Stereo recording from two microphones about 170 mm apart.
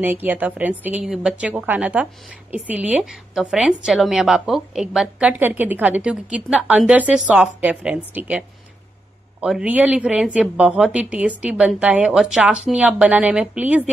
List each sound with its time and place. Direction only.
0.0 s a woman's voice: 10° right (ahead or behind)